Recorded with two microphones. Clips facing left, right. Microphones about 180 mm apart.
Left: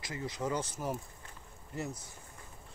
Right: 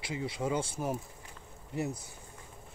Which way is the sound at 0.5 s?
25° right (ahead or behind).